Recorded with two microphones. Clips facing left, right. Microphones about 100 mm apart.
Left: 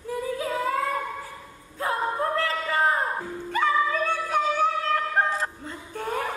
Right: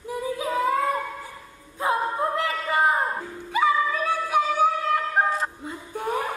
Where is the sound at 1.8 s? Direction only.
20° right (ahead or behind).